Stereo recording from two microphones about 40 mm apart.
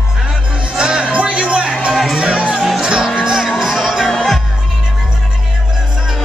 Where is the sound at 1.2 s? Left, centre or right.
Right.